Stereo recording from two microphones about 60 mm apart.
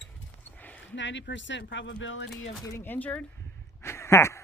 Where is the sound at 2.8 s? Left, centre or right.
Left.